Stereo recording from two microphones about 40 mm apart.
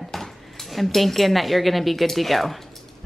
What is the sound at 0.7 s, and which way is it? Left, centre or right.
Speech, centre.